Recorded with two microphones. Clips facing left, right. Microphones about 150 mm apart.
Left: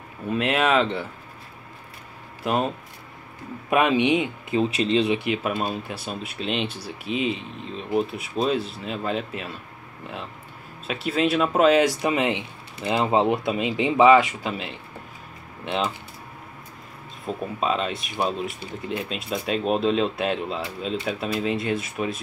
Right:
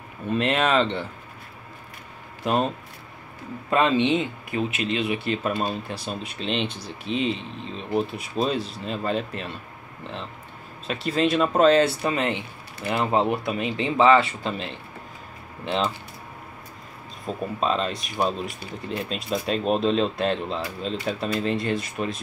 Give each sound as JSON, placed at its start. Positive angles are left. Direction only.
{"t": 0.3, "sound": "speech", "side_deg": 5}
{"t": 2.4, "sound": "speech", "side_deg": 5}
{"t": 3.7, "sound": "speech", "side_deg": 15}
{"t": 5.2, "sound": "speech", "side_deg": 10}
{"t": 10.9, "sound": "speech", "side_deg": 5}
{"t": 17.3, "sound": "speech", "side_deg": 5}